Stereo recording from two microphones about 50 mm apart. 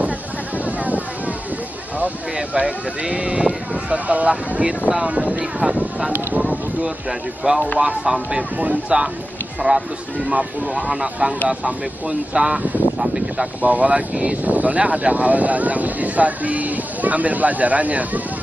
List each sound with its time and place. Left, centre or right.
0.7 s a sound: right
2.3 s speech: right
7.8 s speech: right
9.6 s speech: right
10.7 s speech: centre
13.6 s speech: right